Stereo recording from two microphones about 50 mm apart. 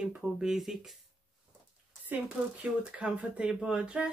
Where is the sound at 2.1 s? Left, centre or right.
Right.